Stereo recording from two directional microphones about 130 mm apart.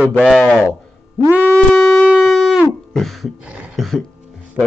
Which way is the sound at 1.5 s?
15° left (ahead or behind).